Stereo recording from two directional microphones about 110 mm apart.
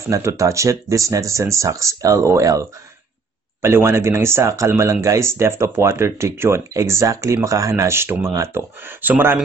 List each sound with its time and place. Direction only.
0.1 s speech: 25° right (ahead or behind)
3.6 s speech: 25° right (ahead or behind)